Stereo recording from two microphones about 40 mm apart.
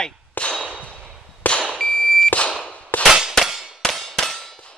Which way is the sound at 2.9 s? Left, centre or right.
Left.